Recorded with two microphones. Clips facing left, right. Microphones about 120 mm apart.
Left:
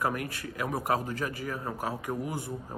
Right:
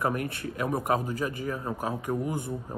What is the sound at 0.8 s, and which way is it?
A man's voice, 15° right (ahead or behind).